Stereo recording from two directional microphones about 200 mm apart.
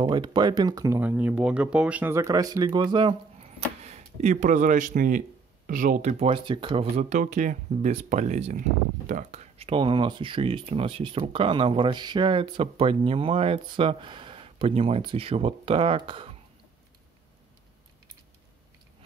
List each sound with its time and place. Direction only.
0.0 s speech: 20° right (ahead or behind)